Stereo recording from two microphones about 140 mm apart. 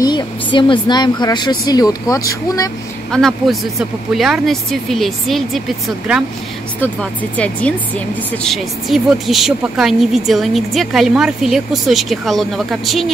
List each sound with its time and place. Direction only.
0.0 s speech: 35° left (ahead or behind)
3.1 s speech: centre (ahead or behind)
6.8 s speech: 10° left (ahead or behind)
8.5 s speech: centre (ahead or behind)